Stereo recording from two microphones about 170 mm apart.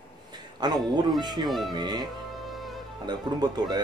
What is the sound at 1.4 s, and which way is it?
Speech, centre (ahead or behind).